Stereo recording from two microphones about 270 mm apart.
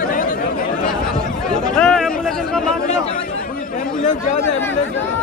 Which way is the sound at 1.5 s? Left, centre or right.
Centre.